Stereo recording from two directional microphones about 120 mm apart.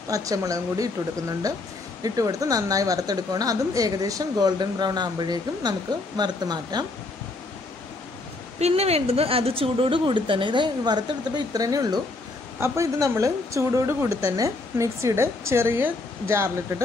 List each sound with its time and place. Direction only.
0.1 s a woman's voice: 30° right (ahead or behind)
2.0 s a woman's voice: 30° right (ahead or behind)
8.5 s a woman's voice: 60° right (ahead or behind); by 16.8 s 20° right (ahead or behind)